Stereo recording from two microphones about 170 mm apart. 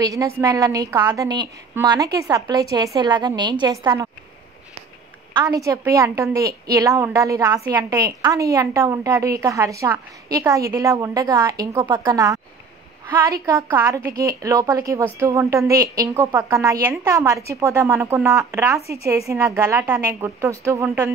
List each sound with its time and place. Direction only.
0.0 s a woman's voice: 20° right (ahead or behind)
5.4 s a woman's voice: 20° right (ahead or behind)